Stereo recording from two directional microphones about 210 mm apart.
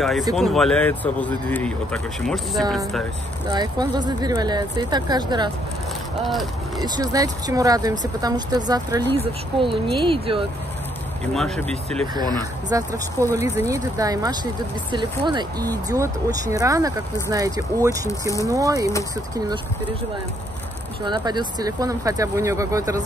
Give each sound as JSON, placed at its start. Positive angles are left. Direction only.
{"t": 0.4, "sound": "speech", "side_deg": 0}
{"t": 3.4, "sound": "speech", "side_deg": -20}
{"t": 6.8, "sound": "speech", "side_deg": -20}
{"t": 11.3, "sound": "speech", "side_deg": 0}
{"t": 12.2, "sound": "speech", "side_deg": -20}
{"t": 21.0, "sound": "speech", "side_deg": -20}